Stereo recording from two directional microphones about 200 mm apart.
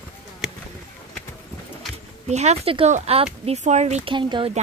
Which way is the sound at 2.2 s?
35° right (ahead or behind).